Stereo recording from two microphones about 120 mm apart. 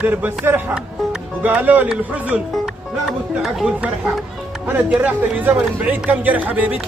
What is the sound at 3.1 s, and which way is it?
Speech, centre (ahead or behind).